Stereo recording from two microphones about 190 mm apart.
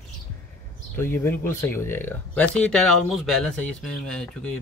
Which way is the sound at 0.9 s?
15° left (ahead or behind).